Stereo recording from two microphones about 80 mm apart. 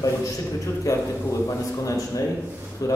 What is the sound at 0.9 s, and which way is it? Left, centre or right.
A man's voice, left.